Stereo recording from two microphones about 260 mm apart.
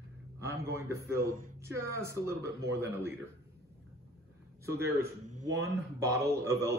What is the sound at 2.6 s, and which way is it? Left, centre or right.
Speech, centre.